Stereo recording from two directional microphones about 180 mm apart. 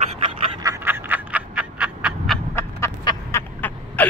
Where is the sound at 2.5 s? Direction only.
15° left (ahead or behind).